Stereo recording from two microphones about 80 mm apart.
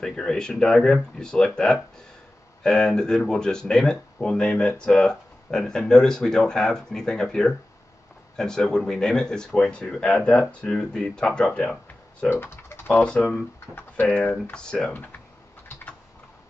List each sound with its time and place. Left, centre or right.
0.0 s speech: centre
12.3 s speech: left; by 14.9 s centre
14.9 s speech: left